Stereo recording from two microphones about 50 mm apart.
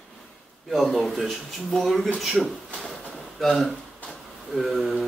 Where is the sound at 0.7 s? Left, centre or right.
Centre.